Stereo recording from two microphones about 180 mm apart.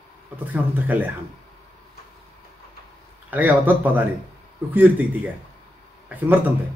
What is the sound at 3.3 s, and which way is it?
Speech, 10° right (ahead or behind).